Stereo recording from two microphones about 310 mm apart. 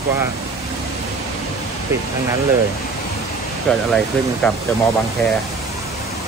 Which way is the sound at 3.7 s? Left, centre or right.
Centre.